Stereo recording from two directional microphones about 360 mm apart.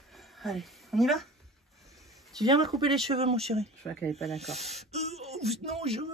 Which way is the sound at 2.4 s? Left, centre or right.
Centre.